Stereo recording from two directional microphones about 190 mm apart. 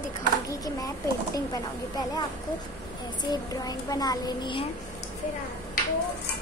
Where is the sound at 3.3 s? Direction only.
20° left (ahead or behind).